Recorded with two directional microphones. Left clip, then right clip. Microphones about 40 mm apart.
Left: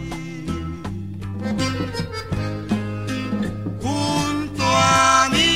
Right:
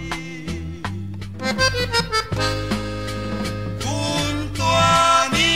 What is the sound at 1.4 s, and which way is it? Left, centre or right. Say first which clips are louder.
Accordion: right 6 dB; left.